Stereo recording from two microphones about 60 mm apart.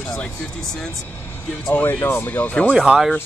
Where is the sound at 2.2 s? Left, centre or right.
Left.